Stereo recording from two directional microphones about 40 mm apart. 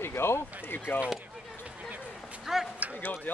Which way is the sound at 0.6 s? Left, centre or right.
Left.